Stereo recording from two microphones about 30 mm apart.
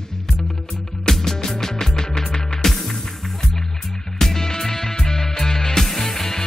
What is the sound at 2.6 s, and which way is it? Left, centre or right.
Music, centre.